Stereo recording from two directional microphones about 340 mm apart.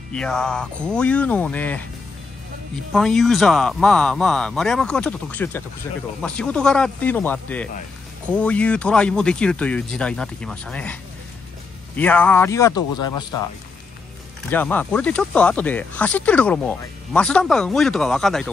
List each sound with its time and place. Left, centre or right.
0.1 s speech: centre
2.9 s speech: centre
14.5 s speech: centre